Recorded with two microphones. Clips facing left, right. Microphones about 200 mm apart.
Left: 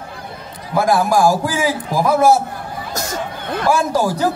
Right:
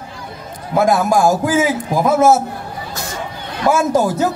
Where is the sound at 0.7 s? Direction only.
20° right (ahead or behind).